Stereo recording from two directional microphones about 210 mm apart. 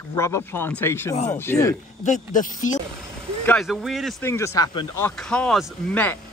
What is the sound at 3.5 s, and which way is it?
Speech, centre (ahead or behind).